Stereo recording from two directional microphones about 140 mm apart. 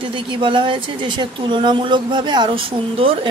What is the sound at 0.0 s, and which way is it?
A woman's voice, 35° right (ahead or behind).